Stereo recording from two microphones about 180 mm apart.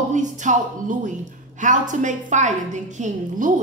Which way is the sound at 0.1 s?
45° right (ahead or behind).